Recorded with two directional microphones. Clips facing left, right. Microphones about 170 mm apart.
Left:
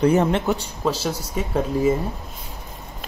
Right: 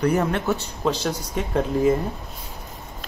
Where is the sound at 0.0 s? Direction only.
25° left (ahead or behind); by 2.0 s 5° left (ahead or behind).